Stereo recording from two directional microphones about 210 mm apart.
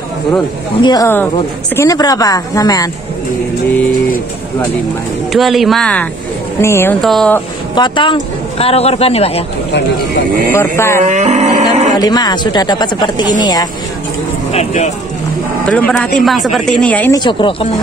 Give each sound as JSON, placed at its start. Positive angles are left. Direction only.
{"t": 0.7, "sound": "speech", "side_deg": 20}
{"t": 5.3, "sound": "speech", "side_deg": 0}
{"t": 7.7, "sound": "speech", "side_deg": 20}
{"t": 10.5, "sound": "speech", "side_deg": 10}
{"t": 11.0, "sound": "cattle", "side_deg": -35}
{"t": 12.0, "sound": "speech", "side_deg": 20}
{"t": 14.5, "sound": "speech", "side_deg": 30}
{"t": 15.6, "sound": "speech", "side_deg": 5}
{"t": 17.2, "sound": "speech", "side_deg": 25}